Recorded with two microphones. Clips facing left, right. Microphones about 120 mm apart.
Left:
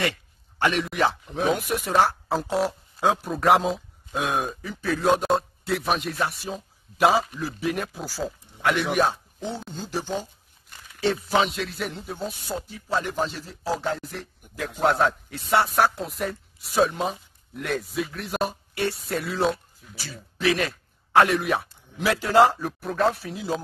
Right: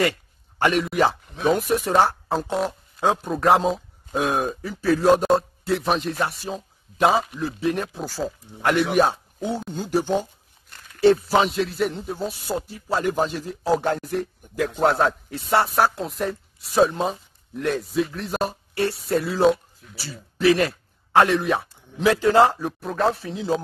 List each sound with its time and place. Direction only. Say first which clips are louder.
0.8 s speech: right 3 dB; centre (ahead or behind)
11.2 s speech: right 3 dB; centre (ahead or behind)
13.0 s a man's voice: right 5 dB; 45° right (ahead or behind)
14.9 s speech: left 2 dB; centre (ahead or behind)
22.0 s a man's voice: right 4 dB; 20° right (ahead or behind)
22.4 s speech: right 1 dB; centre (ahead or behind)